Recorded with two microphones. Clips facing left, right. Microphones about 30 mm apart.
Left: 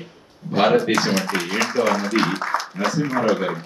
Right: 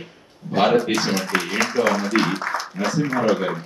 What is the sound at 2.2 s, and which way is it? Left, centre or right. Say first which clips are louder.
Speech: left 1 dB; left.